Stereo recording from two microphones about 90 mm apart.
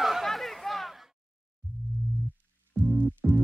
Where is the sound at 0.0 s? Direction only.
Centre (ahead or behind).